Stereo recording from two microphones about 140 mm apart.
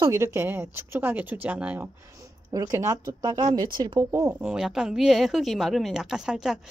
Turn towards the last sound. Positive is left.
turn(degrees=-5)  # may be behind; listen again after turning